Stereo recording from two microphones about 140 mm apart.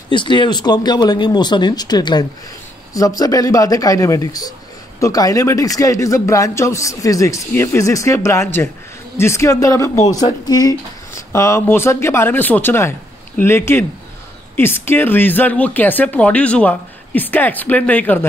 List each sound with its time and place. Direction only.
0.1 s a man's voice: 35° left (ahead or behind); by 18.2 s 10° left (ahead or behind)